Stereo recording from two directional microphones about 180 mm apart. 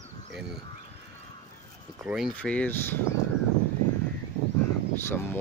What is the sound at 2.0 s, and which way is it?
Speech, 5° right (ahead or behind).